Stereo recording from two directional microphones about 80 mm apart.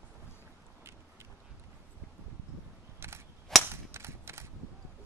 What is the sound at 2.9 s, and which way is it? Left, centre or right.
Cap gun, right.